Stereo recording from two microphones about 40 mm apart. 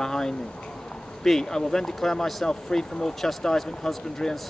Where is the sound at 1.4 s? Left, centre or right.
Centre.